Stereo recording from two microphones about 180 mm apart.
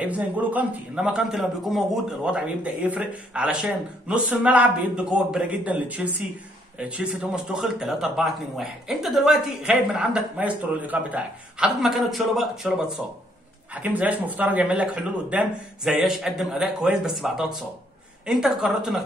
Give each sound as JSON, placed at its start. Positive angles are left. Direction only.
{"t": 0.0, "sound": "a man's voice", "side_deg": -10}